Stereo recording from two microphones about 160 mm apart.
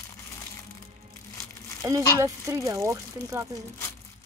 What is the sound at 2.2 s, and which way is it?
Speech, 20° right (ahead or behind).